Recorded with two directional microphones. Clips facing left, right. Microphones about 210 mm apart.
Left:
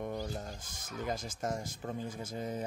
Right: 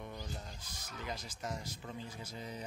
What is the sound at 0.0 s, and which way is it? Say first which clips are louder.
Speech: left 8 dB; 45° left (ahead or behind).